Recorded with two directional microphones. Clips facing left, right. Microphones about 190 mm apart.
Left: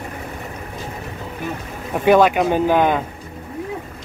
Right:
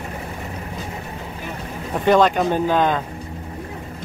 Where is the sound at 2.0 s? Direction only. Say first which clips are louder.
Left 2 dB; 10° left (ahead or behind).